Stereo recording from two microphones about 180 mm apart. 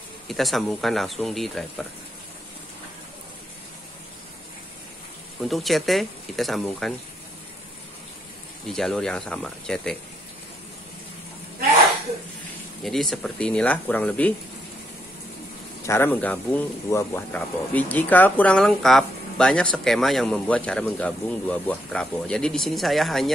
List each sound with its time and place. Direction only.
0.3 s speech: centre (ahead or behind)
5.5 s speech: centre (ahead or behind)
8.6 s speech: centre (ahead or behind)
12.8 s speech: centre (ahead or behind)
15.8 s speech: 15° left (ahead or behind)